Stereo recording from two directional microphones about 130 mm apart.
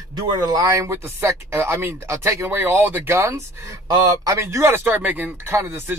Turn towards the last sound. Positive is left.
turn(degrees=-15)  # may be behind; listen again after turning